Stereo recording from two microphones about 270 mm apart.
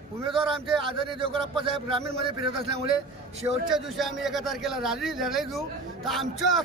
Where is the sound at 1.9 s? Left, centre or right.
Centre.